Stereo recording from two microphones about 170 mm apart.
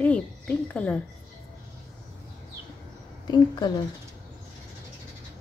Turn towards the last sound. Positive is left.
turn(degrees=25)  # may be behind; listen again after turning